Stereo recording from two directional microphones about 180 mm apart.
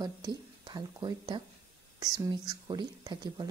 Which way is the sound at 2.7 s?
25° right (ahead or behind).